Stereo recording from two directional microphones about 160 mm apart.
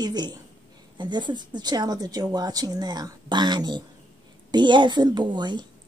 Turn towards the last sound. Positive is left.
turn(degrees=-25)  # may be behind; listen again after turning